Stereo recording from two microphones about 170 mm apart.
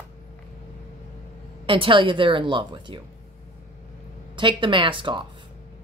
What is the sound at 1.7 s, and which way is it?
Speech, 30° right (ahead or behind).